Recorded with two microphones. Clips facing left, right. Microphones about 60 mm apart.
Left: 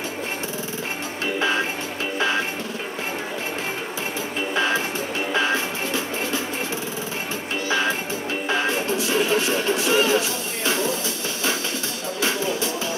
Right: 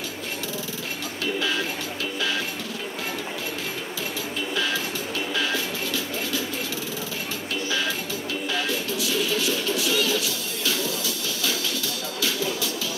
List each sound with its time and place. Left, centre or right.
1.4 s music: left
4.6 s music: left
8.5 s music: left
12.2 s music: left